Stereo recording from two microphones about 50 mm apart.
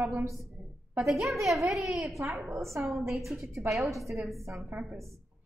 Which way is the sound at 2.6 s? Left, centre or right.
Right.